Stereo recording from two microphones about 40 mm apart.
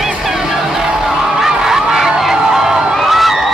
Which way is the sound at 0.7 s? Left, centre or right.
Centre.